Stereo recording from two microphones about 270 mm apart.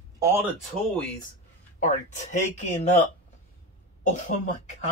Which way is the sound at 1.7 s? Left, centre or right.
Left.